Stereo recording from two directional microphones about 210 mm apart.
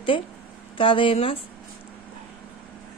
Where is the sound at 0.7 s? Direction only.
25° left (ahead or behind).